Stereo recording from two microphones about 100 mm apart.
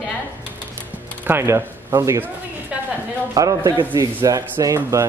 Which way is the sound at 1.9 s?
30° right (ahead or behind).